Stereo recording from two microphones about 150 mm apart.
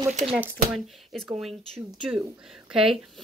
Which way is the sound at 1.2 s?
Centre (ahead or behind).